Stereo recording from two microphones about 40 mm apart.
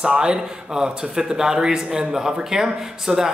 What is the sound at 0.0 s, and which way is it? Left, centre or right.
Speech, right.